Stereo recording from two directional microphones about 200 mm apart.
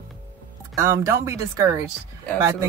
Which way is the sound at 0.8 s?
15° right (ahead or behind).